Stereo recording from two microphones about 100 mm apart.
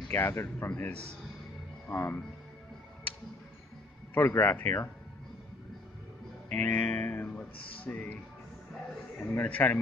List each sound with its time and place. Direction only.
0.1 s speech: 25° left (ahead or behind)
0.7 s music: 15° left (ahead or behind)
1.9 s speech: 25° left (ahead or behind)
4.1 s speech: 25° left (ahead or behind)
6.5 s music: 15° left (ahead or behind)
9.2 s music: 15° left (ahead or behind)